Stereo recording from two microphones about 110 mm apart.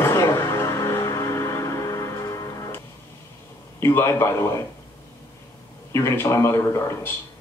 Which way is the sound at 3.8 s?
25° left (ahead or behind).